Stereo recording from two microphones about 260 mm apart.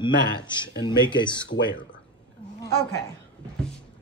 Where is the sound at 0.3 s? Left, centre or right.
Centre.